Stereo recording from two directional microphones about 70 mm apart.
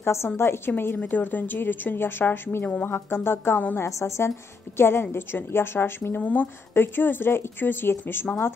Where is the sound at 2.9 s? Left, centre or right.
Left.